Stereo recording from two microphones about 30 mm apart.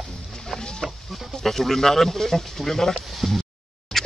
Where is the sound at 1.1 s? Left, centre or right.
Centre.